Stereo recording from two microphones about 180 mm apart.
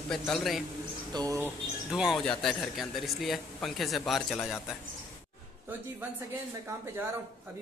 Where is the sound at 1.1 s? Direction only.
20° right (ahead or behind).